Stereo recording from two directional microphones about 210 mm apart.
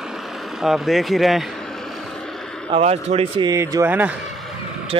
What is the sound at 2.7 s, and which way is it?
A man's voice, 30° right (ahead or behind).